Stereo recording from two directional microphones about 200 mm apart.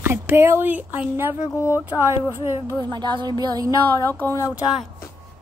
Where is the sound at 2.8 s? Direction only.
20° right (ahead or behind).